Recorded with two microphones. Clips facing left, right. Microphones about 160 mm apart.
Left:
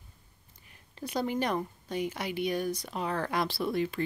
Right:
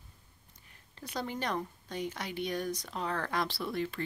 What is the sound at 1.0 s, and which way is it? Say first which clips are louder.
A woman's voice: left 6 dB; 15° left (ahead or behind).